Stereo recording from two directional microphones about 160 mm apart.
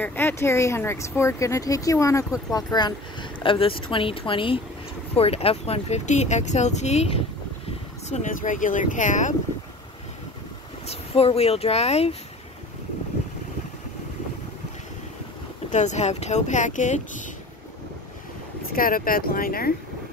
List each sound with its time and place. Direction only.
0.0 s speech: 10° left (ahead or behind); by 7.1 s 45° left (ahead or behind)
8.1 s speech: 55° left (ahead or behind)
10.9 s speech: 40° left (ahead or behind)
15.7 s speech: 45° left (ahead or behind)
18.7 s speech: 65° left (ahead or behind)